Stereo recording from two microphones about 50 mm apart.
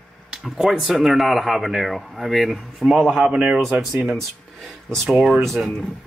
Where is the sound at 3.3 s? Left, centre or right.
Right.